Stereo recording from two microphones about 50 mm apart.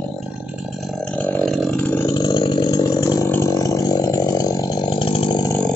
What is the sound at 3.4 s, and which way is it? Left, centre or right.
Chainsaw, left.